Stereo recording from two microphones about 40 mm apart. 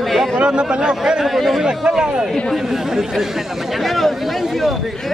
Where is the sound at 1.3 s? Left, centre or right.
Centre.